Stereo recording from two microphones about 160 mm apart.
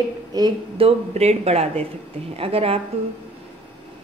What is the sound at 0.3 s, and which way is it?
Speech, 30° right (ahead or behind).